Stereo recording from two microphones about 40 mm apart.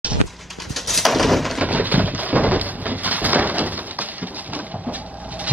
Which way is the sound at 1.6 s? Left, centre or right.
Right.